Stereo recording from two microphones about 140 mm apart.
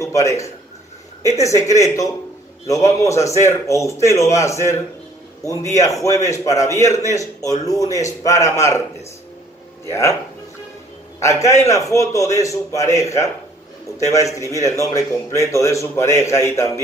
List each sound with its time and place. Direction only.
0.0 s a man's voice: 20° left (ahead or behind)
5.8 s a man's voice: 25° left (ahead or behind)
9.8 s a man's voice: 20° left (ahead or behind)
11.1 s a man's voice: 20° left (ahead or behind)